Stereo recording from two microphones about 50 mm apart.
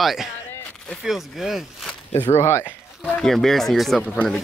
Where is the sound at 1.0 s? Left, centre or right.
Centre.